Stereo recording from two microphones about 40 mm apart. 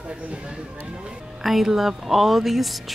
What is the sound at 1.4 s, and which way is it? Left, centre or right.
A woman's voice, centre.